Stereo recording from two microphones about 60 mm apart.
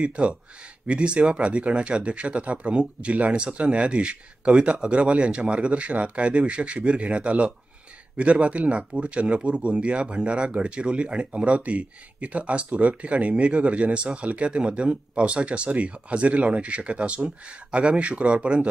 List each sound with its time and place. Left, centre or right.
0.0 s speech: centre